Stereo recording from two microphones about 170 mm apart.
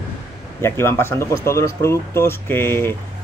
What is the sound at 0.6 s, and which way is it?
Speech, 15° left (ahead or behind).